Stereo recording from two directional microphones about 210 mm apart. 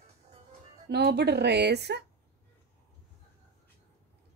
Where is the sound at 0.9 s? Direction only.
55° right (ahead or behind).